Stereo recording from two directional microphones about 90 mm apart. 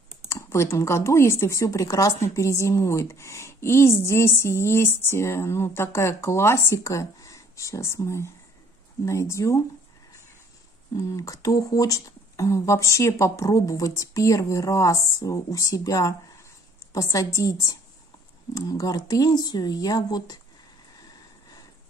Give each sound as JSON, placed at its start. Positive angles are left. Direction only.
{"t": 0.3, "sound": "speech", "side_deg": 30}
{"t": 11.0, "sound": "speech", "side_deg": 35}